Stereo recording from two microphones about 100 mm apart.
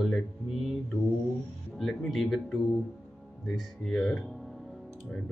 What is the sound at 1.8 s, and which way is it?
Speech, centre (ahead or behind).